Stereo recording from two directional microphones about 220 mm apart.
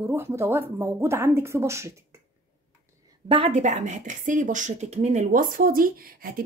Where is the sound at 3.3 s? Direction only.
25° right (ahead or behind).